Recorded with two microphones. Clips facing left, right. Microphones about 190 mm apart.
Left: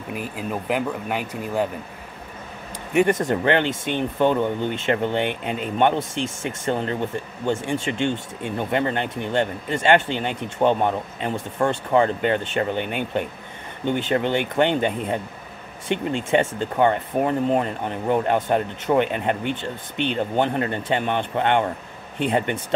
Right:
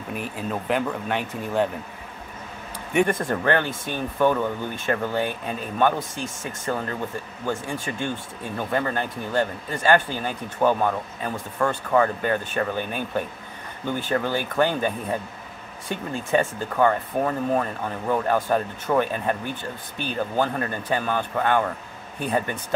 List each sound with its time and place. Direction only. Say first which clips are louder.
0.1 s speech: left 1 dB; 10° left (ahead or behind)
3.1 s speech: left 3 dB; 20° left (ahead or behind)